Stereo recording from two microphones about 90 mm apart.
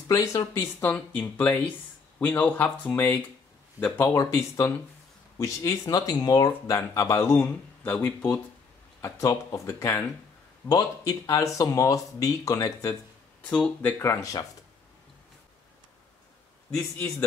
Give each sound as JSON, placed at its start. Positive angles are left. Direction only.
{"t": 0.1, "sound": "speech", "side_deg": 40}
{"t": 0.6, "sound": "speech", "side_deg": 20}
{"t": 4.1, "sound": "speech", "side_deg": 35}
{"t": 9.2, "sound": "speech", "side_deg": 40}
{"t": 13.4, "sound": "speech", "side_deg": 20}